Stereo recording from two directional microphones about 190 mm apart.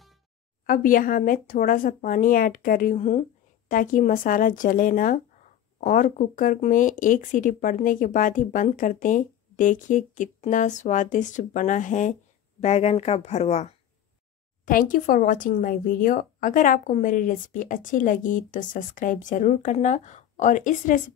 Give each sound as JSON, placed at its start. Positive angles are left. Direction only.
{"t": 0.7, "sound": "speech", "side_deg": 45}
{"t": 14.6, "sound": "speech", "side_deg": 45}